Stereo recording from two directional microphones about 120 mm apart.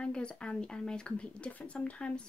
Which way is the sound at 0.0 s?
10° left (ahead or behind).